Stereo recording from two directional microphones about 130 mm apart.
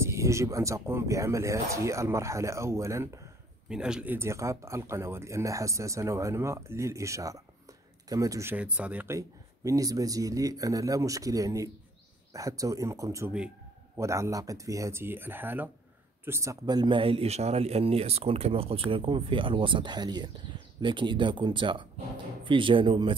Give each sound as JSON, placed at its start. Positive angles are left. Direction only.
{"t": 0.0, "sound": "speech", "side_deg": -20}
{"t": 3.6, "sound": "speech", "side_deg": -5}
{"t": 8.5, "sound": "speech", "side_deg": -10}
{"t": 16.6, "sound": "speech", "side_deg": -35}